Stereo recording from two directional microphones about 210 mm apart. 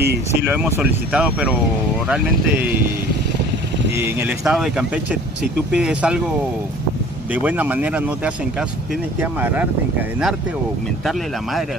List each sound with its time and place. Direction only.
0.0 s speech: 50° right (ahead or behind)
0.5 s speech: 10° right (ahead or behind)
4.0 s speech: 5° right (ahead or behind)
7.3 s speech: 10° right (ahead or behind)
9.2 s speech: 5° right (ahead or behind)